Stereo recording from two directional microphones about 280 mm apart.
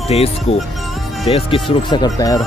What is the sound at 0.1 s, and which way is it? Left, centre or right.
Speech, left.